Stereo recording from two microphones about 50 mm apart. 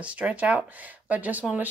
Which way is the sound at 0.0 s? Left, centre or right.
Right.